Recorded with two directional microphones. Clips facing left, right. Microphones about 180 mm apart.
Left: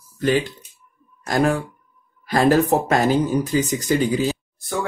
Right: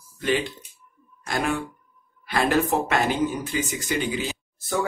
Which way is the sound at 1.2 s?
40° left (ahead or behind).